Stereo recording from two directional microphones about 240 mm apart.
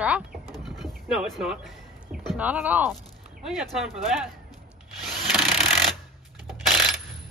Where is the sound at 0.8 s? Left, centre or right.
Centre.